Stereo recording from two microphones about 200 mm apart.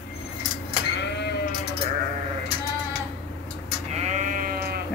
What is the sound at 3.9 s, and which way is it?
Sheep, 35° right (ahead or behind).